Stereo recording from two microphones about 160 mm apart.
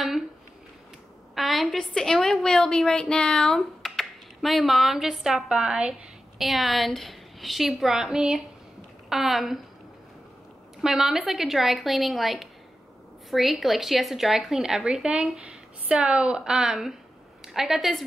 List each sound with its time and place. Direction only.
1.3 s a woman's voice: centre (ahead or behind)
10.8 s a woman's voice: 5° right (ahead or behind)